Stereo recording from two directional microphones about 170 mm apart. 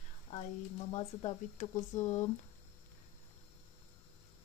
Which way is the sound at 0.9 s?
40° left (ahead or behind).